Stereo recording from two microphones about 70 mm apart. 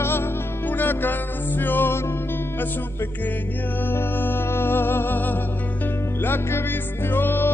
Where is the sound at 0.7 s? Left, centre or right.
Left.